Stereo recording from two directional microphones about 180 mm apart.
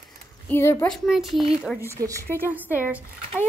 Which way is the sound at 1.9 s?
15° right (ahead or behind).